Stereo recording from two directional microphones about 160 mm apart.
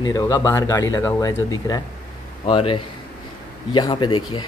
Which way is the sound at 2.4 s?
35° left (ahead or behind).